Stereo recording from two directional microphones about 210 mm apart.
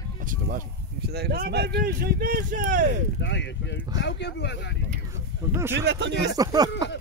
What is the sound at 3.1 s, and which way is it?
Speech, 55° left (ahead or behind).